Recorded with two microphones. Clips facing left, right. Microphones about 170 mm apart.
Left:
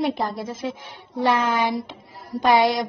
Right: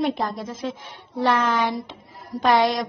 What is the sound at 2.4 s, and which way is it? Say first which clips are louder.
Female singing: left 1 dB; 10° left (ahead or behind).